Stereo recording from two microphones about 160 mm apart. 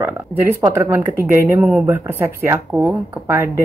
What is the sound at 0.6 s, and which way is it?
A woman's voice, 15° right (ahead or behind).